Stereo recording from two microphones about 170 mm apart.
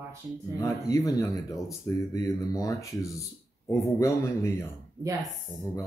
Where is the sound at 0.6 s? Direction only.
20° left (ahead or behind).